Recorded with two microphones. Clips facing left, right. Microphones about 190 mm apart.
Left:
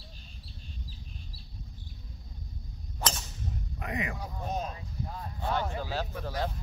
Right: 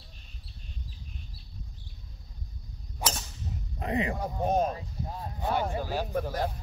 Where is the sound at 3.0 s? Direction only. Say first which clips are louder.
Right 1 dB; 15° right (ahead or behind).